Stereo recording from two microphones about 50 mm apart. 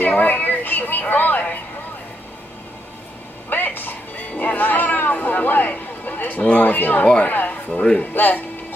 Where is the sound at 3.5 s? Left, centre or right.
Left.